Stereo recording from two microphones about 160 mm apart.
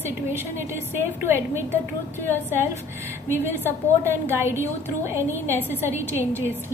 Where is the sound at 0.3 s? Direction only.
15° right (ahead or behind).